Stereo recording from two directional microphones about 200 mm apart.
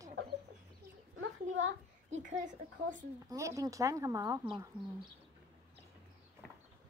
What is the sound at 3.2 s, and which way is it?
Speech, 15° right (ahead or behind).